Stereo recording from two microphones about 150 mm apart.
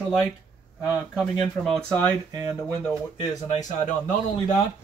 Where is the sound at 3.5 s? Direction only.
45° left (ahead or behind).